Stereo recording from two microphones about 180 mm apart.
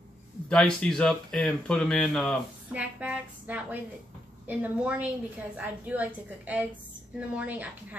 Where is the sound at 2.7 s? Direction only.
10° right (ahead or behind).